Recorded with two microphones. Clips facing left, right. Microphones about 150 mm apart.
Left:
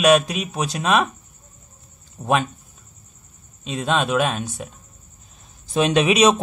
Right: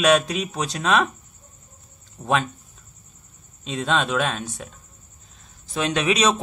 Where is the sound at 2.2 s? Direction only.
Centre (ahead or behind).